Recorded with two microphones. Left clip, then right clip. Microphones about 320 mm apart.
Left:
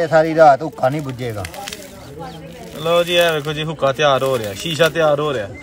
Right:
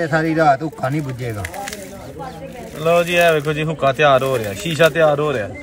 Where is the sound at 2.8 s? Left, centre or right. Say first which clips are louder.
Even; centre.